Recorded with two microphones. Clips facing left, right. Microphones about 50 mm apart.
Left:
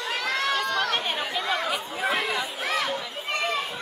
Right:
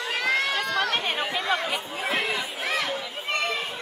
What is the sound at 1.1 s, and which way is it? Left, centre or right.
Chatter, right.